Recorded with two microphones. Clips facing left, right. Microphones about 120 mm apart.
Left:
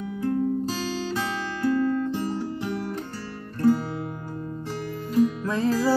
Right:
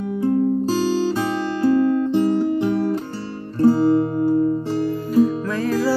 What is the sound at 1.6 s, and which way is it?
Music, 20° right (ahead or behind).